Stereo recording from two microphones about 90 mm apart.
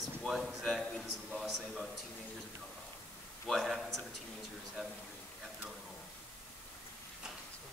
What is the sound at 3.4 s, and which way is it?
Speech, centre (ahead or behind).